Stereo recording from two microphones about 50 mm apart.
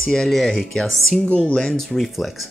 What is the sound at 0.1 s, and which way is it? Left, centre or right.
Speech, centre.